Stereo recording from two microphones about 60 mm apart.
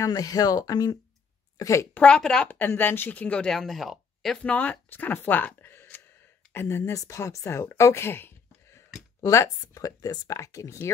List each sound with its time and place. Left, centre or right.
0.0 s speech: left
1.6 s speech: left
2.0 s speech: centre
2.7 s speech: left
3.4 s speech: centre
4.4 s speech: left
5.6 s a sound: left
6.5 s speech: left
6.8 s speech: left
7.7 s a sound: left
9.2 s speech: left